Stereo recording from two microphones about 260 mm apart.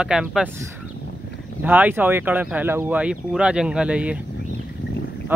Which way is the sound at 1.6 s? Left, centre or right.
Centre.